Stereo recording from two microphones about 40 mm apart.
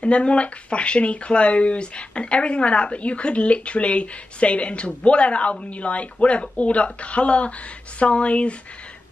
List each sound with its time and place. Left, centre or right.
0.0 s speech: left